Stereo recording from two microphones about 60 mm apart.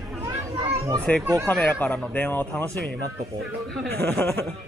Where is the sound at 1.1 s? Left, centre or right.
Left.